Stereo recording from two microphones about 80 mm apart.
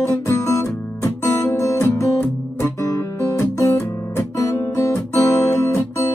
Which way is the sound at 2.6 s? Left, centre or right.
Left.